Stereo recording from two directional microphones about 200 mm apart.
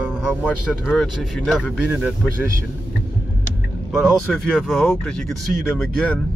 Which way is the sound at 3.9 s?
Centre (ahead or behind).